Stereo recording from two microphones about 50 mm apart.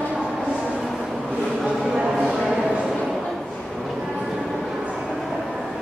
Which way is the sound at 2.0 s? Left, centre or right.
Centre.